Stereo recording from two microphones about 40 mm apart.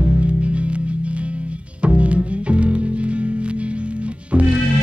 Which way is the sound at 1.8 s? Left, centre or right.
Right.